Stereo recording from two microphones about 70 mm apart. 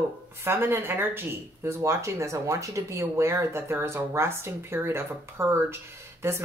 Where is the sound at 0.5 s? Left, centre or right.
Right.